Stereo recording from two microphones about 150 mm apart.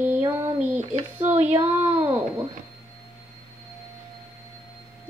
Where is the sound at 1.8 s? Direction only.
45° right (ahead or behind).